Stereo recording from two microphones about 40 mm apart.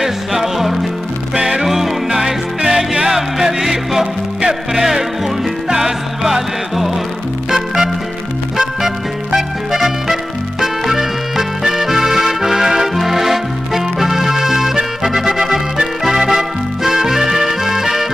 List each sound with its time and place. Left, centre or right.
0.0 s music: centre
1.3 s music: right
1.6 s music: centre